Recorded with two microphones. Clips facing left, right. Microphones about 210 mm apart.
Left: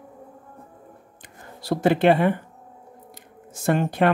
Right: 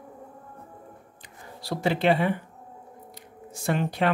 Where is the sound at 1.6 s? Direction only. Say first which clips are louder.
Left 6 dB; 50° left (ahead or behind).